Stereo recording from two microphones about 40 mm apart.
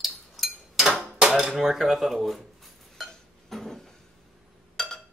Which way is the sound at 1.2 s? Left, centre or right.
Right.